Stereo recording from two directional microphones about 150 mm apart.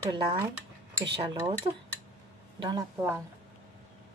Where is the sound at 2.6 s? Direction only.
30° right (ahead or behind).